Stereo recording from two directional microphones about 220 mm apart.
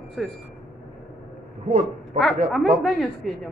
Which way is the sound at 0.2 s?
Centre (ahead or behind).